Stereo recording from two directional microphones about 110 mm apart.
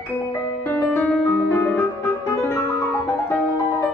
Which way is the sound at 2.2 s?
20° left (ahead or behind).